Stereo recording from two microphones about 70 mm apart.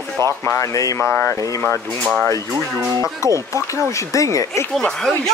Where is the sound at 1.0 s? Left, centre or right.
Left.